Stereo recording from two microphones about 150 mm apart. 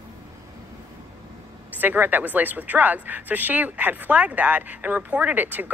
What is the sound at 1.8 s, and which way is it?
A woman's voice, 10° right (ahead or behind).